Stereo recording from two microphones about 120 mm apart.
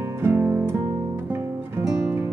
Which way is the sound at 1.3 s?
20° right (ahead or behind).